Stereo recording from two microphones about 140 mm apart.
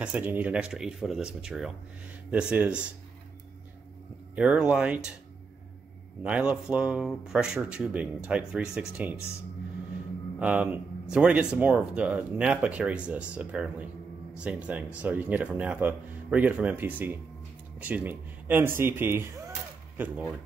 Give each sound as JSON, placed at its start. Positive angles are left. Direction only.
{"t": 0.0, "sound": "speech", "side_deg": -10}
{"t": 4.4, "sound": "speech", "side_deg": -5}
{"t": 6.2, "sound": "speech", "side_deg": -10}
{"t": 10.4, "sound": "speech", "side_deg": -10}